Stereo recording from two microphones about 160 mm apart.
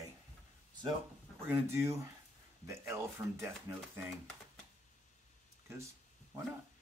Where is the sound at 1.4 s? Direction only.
15° right (ahead or behind).